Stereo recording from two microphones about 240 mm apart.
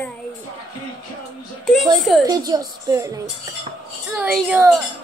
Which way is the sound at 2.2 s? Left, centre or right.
Centre.